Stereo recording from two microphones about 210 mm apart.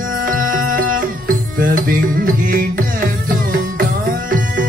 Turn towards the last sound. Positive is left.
turn(degrees=-40)  # may be behind; listen again after turning